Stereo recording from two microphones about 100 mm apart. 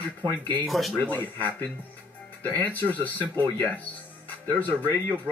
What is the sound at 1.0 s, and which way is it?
Speech, 15° left (ahead or behind).